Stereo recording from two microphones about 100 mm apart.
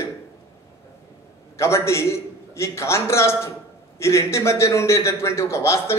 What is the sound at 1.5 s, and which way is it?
A man's voice, 25° left (ahead or behind).